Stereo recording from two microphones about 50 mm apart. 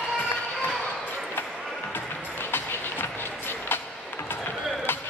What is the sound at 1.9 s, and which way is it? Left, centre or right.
Music, left.